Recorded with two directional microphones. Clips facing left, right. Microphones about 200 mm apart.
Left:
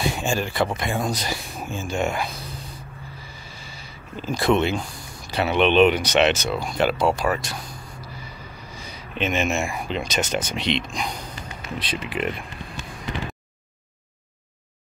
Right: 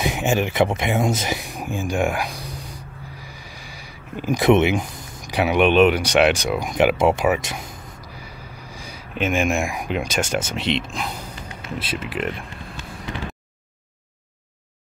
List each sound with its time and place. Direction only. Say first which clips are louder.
0.0 s speech: right 3 dB; 20° right (ahead or behind); by 12.4 s centre (ahead or behind)